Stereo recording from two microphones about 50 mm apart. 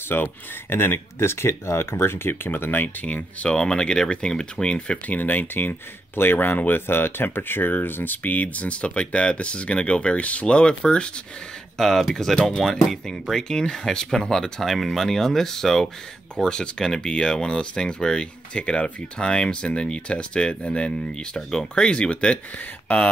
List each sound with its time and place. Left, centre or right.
0.1 s speech: left
3.4 s speech: centre
5.0 s speech: left